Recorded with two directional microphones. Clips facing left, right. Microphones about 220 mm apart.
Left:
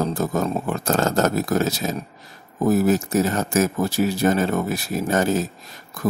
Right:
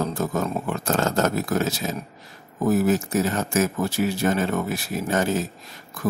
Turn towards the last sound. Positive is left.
turn(degrees=40)  # may be behind; listen again after turning